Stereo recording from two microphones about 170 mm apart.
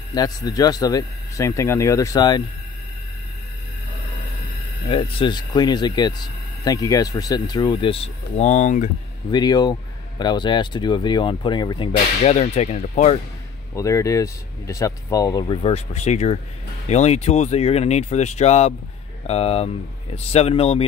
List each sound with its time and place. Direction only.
0.1 s speech: 20° left (ahead or behind)
4.8 s speech: 30° left (ahead or behind)
9.3 s speech: 25° left (ahead or behind)
12.2 s speech: 40° left (ahead or behind)
13.7 s speech: 20° left (ahead or behind); by 20.8 s 35° left (ahead or behind)